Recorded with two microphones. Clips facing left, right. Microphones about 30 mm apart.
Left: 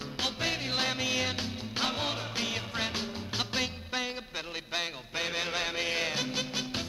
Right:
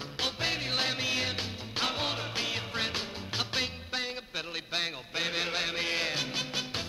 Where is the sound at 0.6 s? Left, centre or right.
Right.